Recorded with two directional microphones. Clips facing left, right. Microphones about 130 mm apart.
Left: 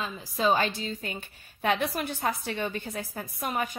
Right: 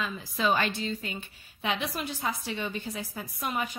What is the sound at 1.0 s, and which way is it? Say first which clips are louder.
A woman's voice: left 1 dB; 50° left (ahead or behind).